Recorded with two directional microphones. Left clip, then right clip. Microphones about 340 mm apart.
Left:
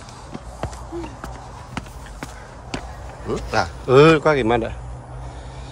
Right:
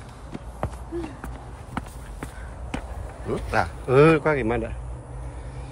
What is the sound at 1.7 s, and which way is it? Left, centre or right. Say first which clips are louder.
Run: even; centre.